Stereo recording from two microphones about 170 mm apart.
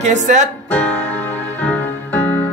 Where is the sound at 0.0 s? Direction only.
45° right (ahead or behind).